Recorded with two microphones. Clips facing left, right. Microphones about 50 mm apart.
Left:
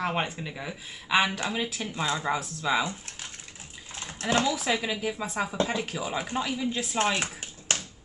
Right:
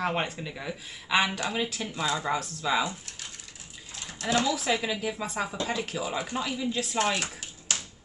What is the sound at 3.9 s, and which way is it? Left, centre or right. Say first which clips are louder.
Bathtub: left 1 dB; left.